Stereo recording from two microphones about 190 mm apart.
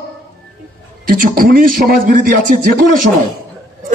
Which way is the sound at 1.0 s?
50° right (ahead or behind).